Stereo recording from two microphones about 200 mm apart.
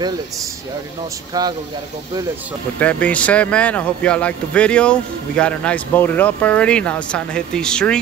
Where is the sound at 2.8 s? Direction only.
5° left (ahead or behind).